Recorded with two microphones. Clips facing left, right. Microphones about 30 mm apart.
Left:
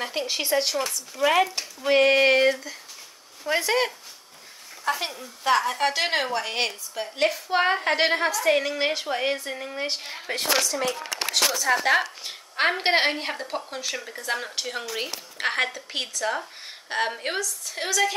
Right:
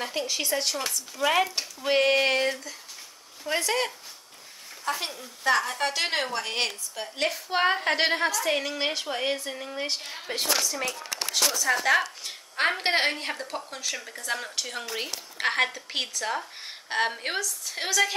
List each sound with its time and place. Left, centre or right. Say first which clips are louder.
0.0 s a woman's voice: left 2 dB; centre
0.3 s speech: left 6 dB; left
1.1 s a woman's voice: left 3 dB; centre
10.2 s a woman's voice: left 3 dB; left
10.9 s speech: left 4 dB; left
11.6 s a woman's voice: left 1 dB; centre
15.3 s a woman's voice: even; centre